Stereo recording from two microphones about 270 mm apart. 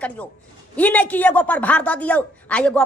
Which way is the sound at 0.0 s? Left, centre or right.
Centre.